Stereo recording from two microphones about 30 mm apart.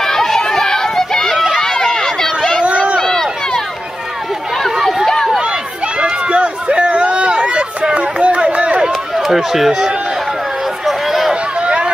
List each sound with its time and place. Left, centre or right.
0.0 s run: centre
5.0 s run: centre
6.2 s a sound: right
8.4 s run: right
9.1 s speech: centre
10.9 s a sound: centre
11.6 s run: right